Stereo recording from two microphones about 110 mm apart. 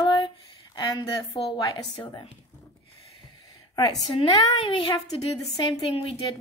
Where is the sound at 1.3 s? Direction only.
40° left (ahead or behind).